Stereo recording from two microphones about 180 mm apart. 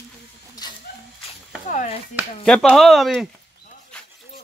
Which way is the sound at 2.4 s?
5° left (ahead or behind).